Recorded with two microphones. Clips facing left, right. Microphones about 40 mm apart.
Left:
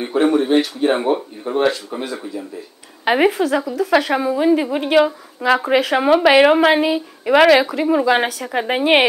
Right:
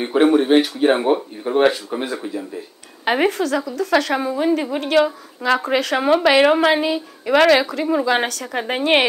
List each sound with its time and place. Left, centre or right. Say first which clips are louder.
0.0 s speech: right 1 dB; centre
3.1 s a woman's voice: left 3 dB; centre